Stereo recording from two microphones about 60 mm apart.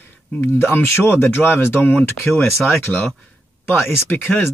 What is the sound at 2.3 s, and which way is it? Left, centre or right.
Speech, centre.